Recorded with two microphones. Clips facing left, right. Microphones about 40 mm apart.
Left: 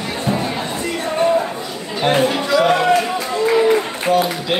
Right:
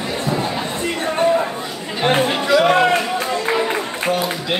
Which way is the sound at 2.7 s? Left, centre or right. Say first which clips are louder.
Even; right.